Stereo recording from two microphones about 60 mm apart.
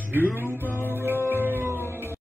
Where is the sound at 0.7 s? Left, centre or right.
Left.